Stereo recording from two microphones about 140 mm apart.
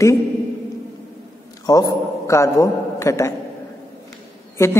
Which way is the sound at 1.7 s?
25° left (ahead or behind).